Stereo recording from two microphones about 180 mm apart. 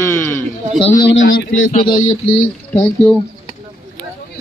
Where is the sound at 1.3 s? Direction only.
80° left.